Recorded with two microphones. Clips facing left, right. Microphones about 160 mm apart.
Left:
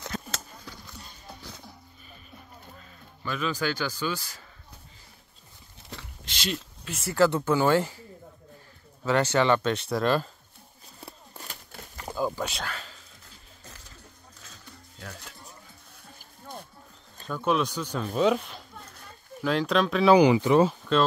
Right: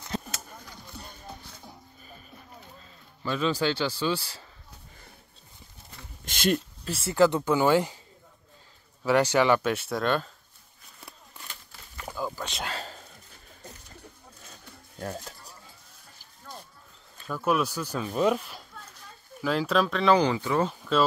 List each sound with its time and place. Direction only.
3.3 s speech: 30° right (ahead or behind)
5.9 s a sound: 90° left
6.2 s a sound: 50° right (ahead or behind)
6.9 s speech: 30° right (ahead or behind)
7.2 s speech: 15° right (ahead or behind)
9.0 s speech: 10° right (ahead or behind)
11.0 s horse: 35° left (ahead or behind)
12.2 s a sound: 15° left (ahead or behind)
15.0 s a sound: 40° right (ahead or behind)
17.3 s speech: 5° right (ahead or behind)
20.1 s speech: 15° left (ahead or behind)
20.6 s speech: 5° left (ahead or behind)